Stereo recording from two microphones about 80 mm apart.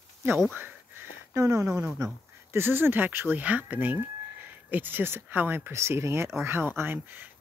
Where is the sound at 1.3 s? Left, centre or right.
Right.